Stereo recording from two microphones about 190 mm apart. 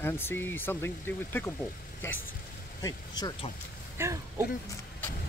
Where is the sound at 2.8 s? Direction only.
20° left (ahead or behind).